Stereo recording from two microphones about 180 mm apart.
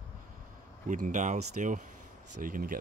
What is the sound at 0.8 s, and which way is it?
Speech, 45° right (ahead or behind).